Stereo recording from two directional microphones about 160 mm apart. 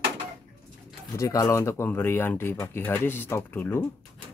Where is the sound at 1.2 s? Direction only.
20° left (ahead or behind).